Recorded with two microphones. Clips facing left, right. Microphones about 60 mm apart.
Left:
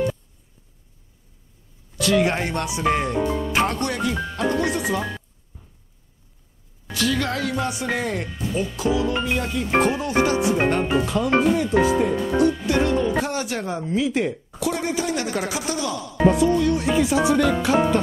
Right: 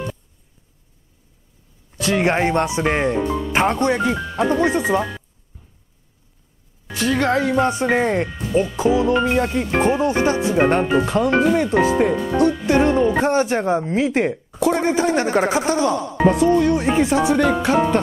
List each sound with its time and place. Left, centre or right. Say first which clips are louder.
2.0 s speech: right 2 dB; right
6.9 s speech: right 5 dB; right
12.6 s speech: right 5 dB; right
13.9 s speech: right 3 dB; right